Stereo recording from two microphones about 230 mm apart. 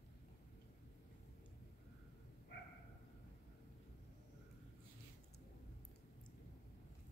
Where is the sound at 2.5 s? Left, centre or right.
Left.